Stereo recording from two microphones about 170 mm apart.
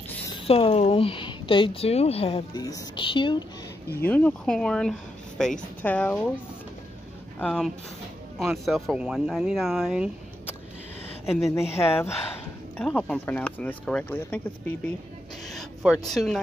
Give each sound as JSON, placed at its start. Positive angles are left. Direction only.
{"t": 0.5, "sound": "a woman's voice", "side_deg": 35}
{"t": 2.5, "sound": "speech", "side_deg": 20}
{"t": 4.0, "sound": "speech", "side_deg": 10}
{"t": 7.3, "sound": "speech", "side_deg": 5}
{"t": 11.3, "sound": "speech", "side_deg": 15}
{"t": 15.4, "sound": "a sound", "side_deg": 0}
{"t": 16.1, "sound": "speech", "side_deg": 0}